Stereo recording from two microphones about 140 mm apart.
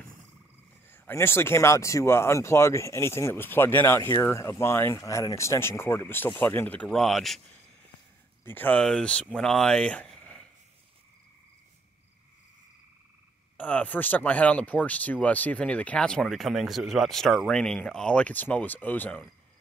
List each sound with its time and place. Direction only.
0.8 s speech: 15° left (ahead or behind)
8.5 s speech: 15° left (ahead or behind)
13.6 s speech: 10° left (ahead or behind)